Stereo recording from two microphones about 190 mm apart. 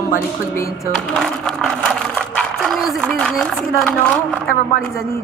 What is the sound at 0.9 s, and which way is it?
A woman's voice, 5° left (ahead or behind).